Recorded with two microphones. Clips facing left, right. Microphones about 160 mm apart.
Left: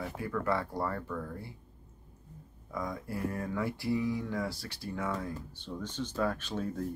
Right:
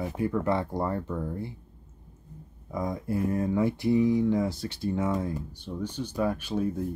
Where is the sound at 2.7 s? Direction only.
20° right (ahead or behind).